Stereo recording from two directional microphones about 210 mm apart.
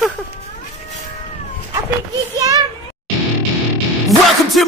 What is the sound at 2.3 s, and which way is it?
Speech, 15° right (ahead or behind).